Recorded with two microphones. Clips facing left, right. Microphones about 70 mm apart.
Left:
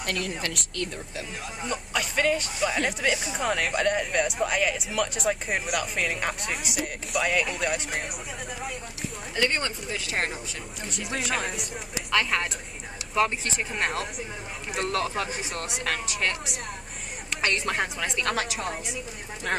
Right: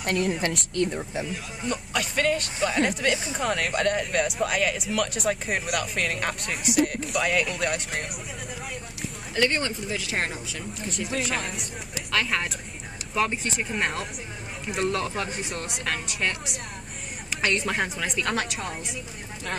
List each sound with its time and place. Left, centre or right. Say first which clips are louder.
0.7 s speech: right 7 dB; right
1.7 s speech: right 2 dB; centre
9.3 s speech: right 2 dB; centre